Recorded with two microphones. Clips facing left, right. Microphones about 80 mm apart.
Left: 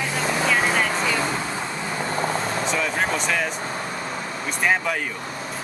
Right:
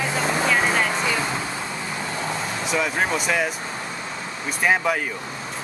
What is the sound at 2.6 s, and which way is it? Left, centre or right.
Speech, centre.